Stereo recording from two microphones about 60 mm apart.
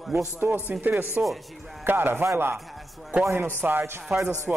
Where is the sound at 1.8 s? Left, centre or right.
Right.